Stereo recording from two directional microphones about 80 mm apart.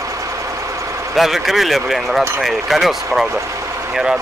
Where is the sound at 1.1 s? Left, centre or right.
Centre.